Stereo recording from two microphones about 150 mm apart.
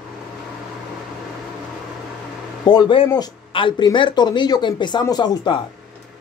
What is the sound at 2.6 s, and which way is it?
Speech, 30° left (ahead or behind).